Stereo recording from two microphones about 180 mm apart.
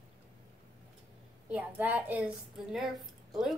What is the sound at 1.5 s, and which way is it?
A woman's voice, 10° right (ahead or behind).